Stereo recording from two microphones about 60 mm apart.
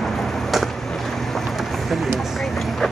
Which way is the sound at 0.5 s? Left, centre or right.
Centre.